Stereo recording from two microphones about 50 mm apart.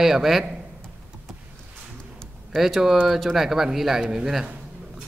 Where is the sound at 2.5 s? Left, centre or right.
Centre.